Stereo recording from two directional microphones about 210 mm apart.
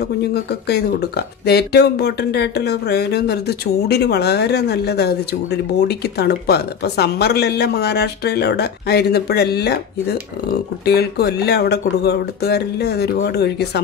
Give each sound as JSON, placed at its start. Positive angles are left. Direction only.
{"t": 0.3, "sound": "speech", "side_deg": 50}